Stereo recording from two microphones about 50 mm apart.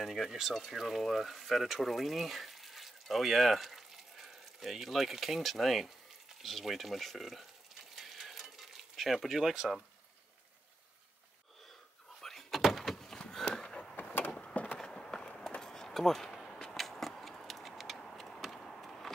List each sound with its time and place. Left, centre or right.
0.0 s speech: centre
7.9 s stir: centre
12.2 s door: centre
14.5 s a sound: left
14.8 s run: centre
17.9 s a sound: centre